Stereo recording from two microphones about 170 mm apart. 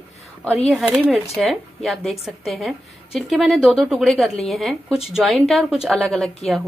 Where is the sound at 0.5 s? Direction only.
Centre (ahead or behind).